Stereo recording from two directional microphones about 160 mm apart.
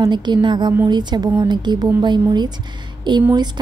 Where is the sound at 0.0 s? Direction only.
30° right (ahead or behind).